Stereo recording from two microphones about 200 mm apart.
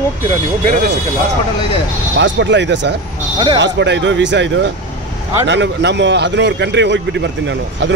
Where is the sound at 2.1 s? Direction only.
65° right (ahead or behind).